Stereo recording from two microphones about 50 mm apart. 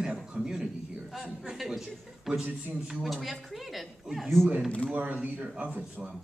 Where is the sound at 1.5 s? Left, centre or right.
Centre.